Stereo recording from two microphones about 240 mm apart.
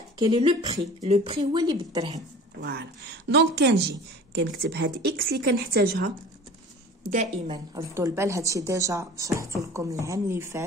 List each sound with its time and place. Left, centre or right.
0.2 s a woman's voice: right
2.6 s a woman's voice: right
7.4 s a woman's voice: centre